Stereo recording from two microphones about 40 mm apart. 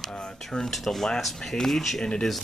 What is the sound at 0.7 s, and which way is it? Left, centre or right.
Speech, centre.